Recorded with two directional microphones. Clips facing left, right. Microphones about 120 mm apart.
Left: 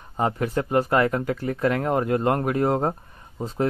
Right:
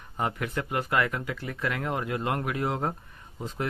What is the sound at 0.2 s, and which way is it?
Speech, 35° left (ahead or behind).